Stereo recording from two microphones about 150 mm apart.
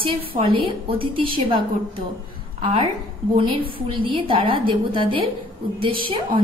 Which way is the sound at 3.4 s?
35° right (ahead or behind).